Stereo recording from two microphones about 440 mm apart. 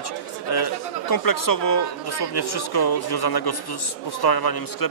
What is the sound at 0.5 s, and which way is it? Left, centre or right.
A man's voice, left.